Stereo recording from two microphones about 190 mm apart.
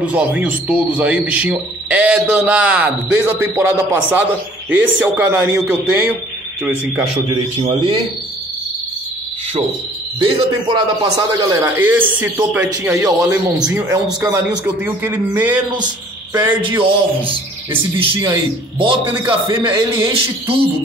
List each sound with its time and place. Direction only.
0.0 s a man's voice: 5° right (ahead or behind)
7.5 s a man's voice: 30° right (ahead or behind)
10.2 s a man's voice: 25° right (ahead or behind); by 15.5 s 10° right (ahead or behind)
17.9 s a man's voice: 25° right (ahead or behind)